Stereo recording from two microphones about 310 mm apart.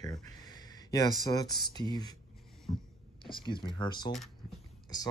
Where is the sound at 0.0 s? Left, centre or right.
Centre.